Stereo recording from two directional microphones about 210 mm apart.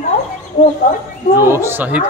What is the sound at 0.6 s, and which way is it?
Speech, 40° left (ahead or behind).